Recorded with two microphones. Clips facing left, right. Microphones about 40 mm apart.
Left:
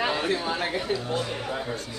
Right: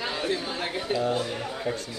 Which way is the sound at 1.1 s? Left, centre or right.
Left.